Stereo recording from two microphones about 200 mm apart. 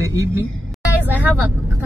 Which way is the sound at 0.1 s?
15° right (ahead or behind).